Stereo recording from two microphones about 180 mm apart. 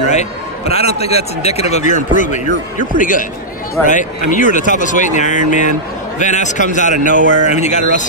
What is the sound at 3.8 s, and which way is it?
Speech, 45° left (ahead or behind).